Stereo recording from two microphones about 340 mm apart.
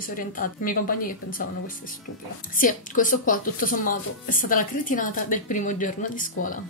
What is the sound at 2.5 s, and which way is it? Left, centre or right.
Speech, left.